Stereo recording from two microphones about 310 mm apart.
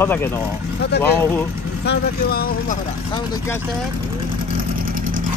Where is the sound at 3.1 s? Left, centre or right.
Centre.